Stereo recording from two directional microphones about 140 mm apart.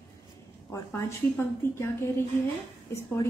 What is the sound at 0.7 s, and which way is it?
A woman's voice, 20° left (ahead or behind).